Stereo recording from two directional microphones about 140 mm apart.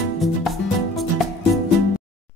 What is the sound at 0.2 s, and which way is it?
Music, centre (ahead or behind).